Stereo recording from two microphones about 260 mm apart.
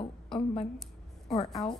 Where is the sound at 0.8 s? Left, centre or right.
Centre.